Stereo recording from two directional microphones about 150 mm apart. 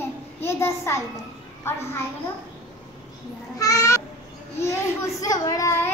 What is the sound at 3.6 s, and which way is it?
Babbling, 20° left (ahead or behind).